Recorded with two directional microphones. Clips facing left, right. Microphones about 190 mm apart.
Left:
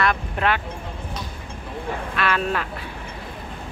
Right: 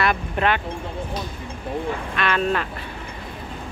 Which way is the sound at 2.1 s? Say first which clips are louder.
Right 1 dB; 5° left (ahead or behind).